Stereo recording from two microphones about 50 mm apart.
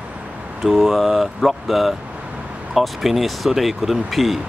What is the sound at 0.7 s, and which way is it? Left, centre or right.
Speech, centre.